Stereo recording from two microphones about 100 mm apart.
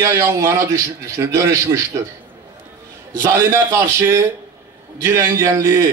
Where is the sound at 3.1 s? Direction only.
35° right (ahead or behind).